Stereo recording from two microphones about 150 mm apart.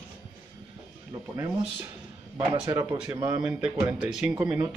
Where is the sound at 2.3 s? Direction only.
25° right (ahead or behind).